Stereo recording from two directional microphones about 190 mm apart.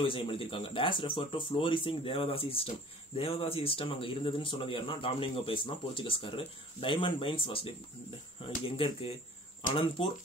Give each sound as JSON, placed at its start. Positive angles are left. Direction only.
{"t": 0.0, "sound": "a man's voice", "side_deg": 25}